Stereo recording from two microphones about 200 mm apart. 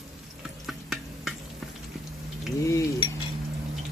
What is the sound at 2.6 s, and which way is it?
Cutlery, 15° left (ahead or behind).